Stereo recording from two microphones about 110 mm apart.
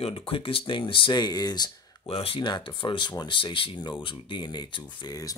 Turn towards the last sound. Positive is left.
turn(degrees=45)  # may be behind; listen again after turning